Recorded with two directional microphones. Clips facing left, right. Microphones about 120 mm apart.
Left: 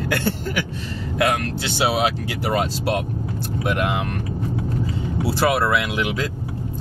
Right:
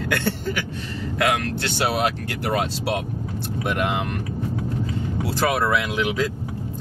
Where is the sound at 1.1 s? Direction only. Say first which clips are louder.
Left 1 dB; centre (ahead or behind).